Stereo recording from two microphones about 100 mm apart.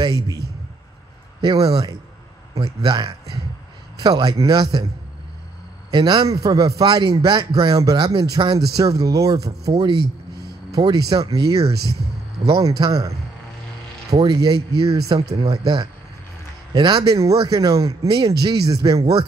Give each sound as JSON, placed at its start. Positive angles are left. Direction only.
{"t": 1.4, "sound": "speech", "side_deg": -40}
{"t": 6.2, "sound": "speech", "side_deg": -35}
{"t": 14.2, "sound": "speech", "side_deg": -40}
{"t": 18.0, "sound": "speech", "side_deg": -50}